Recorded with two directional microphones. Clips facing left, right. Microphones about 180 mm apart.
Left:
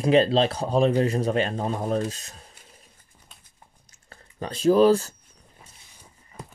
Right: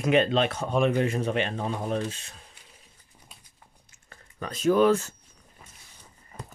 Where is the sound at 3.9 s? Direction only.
30° left (ahead or behind).